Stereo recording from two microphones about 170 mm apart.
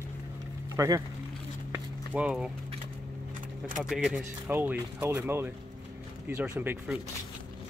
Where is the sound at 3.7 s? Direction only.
Centre (ahead or behind).